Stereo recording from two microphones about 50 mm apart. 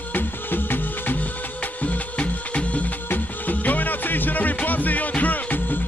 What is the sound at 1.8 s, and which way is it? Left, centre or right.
Music, left.